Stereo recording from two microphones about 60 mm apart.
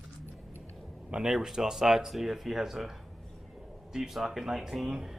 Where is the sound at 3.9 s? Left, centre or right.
Centre.